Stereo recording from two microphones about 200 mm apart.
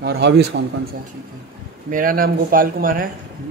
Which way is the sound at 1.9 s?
45° right (ahead or behind).